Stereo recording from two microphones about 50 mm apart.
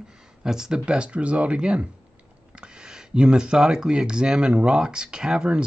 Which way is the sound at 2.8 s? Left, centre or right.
Centre.